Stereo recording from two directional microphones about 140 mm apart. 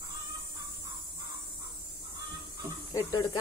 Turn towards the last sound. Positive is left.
turn(degrees=25)  # may be behind; listen again after turning